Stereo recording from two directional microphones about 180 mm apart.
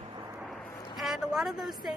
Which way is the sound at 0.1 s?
15° right (ahead or behind).